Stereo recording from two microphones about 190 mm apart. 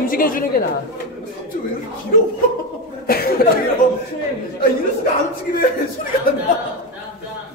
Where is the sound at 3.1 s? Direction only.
55° left (ahead or behind).